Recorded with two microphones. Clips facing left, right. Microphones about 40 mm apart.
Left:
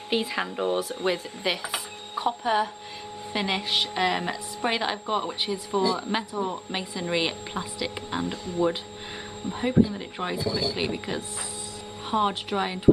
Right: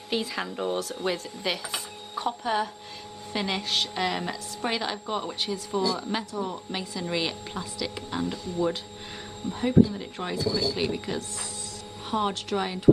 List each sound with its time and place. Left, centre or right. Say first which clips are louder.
0.1 s a woman's voice: left 3 dB; centre